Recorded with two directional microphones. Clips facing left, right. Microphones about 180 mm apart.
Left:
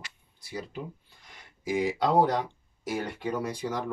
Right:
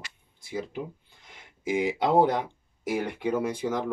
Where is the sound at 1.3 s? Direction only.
20° right (ahead or behind).